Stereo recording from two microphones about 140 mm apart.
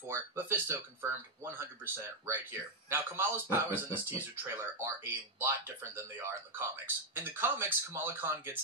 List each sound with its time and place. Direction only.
0.0 s speech: 15° right (ahead or behind)